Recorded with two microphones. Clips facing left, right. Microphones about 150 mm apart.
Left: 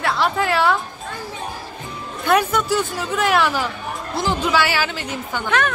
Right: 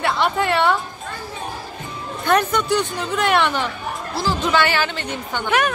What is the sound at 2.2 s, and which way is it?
Speech, 5° left (ahead or behind).